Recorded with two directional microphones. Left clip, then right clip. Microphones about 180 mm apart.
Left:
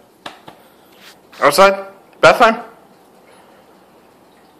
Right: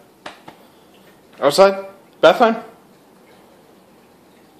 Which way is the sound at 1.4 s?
Centre (ahead or behind).